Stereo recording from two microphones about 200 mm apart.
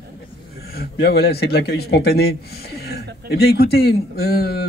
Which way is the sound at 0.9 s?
50° left (ahead or behind).